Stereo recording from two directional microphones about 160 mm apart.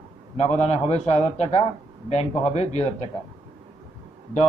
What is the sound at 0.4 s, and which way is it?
A man's voice, 45° left (ahead or behind).